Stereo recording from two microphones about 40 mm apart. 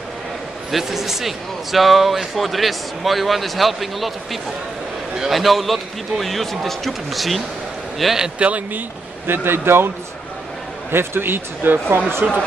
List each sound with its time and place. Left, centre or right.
0.7 s a man's voice: centre
8.4 s speech: right
9.3 s speech: right
10.9 s speech: right
12.2 s speech: right